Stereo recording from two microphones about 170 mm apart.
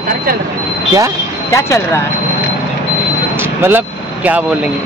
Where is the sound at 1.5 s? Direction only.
15° left (ahead or behind).